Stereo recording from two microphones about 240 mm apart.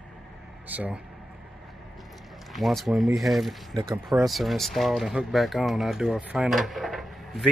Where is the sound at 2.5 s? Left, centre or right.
Centre.